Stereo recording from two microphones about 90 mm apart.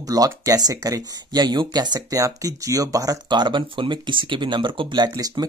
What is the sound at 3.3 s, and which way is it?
Speech, 55° right (ahead or behind).